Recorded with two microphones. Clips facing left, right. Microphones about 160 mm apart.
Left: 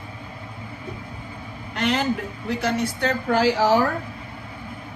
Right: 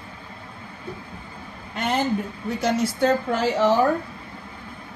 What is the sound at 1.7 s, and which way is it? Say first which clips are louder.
A woman's voice: even; 90° left.